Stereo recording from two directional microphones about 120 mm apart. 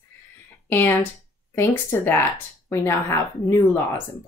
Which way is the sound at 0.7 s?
20° left (ahead or behind).